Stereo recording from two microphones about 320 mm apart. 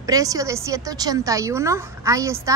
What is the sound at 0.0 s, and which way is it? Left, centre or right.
Speech, centre.